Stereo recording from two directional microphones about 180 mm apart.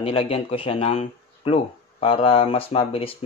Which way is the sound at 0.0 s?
30° left (ahead or behind).